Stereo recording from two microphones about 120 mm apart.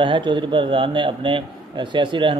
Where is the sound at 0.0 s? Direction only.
40° right (ahead or behind).